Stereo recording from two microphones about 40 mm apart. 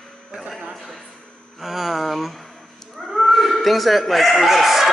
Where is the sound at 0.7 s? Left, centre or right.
Centre.